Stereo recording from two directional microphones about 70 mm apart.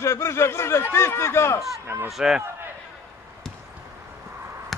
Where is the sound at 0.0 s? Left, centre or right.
Left.